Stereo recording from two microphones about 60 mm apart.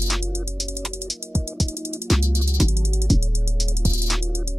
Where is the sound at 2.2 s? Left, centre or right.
Right.